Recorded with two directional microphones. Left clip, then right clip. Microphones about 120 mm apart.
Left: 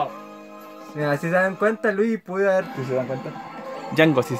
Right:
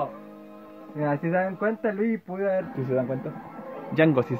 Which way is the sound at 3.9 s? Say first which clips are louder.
Left 3 dB; 25° left (ahead or behind).